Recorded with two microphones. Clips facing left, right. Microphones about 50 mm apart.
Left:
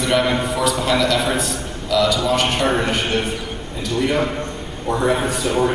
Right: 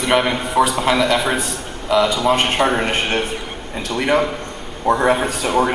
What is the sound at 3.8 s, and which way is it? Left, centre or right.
A man's voice, right.